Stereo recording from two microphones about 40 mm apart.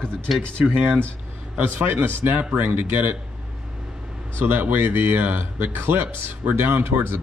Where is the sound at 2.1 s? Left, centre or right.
Right.